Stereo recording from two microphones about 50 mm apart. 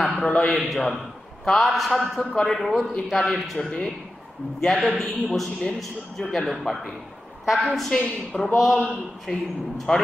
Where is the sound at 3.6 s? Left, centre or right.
Centre.